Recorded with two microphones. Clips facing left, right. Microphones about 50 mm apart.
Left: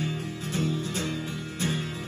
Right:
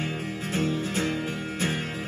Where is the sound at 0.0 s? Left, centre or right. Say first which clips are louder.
Right 1 dB; right.